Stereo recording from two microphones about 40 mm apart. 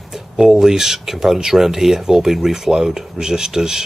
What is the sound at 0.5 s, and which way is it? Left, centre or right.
Speech, centre.